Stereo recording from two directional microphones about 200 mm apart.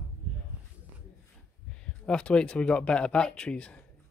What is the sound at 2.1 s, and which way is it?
Speech, 5° left (ahead or behind).